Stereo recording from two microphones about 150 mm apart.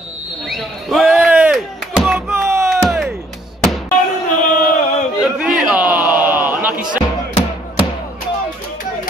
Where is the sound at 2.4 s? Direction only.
20° right (ahead or behind).